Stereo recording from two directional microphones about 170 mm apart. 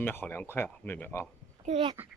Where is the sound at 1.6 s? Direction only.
35° right (ahead or behind).